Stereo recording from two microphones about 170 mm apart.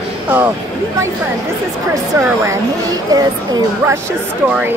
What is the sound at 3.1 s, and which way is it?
Speech, 20° right (ahead or behind).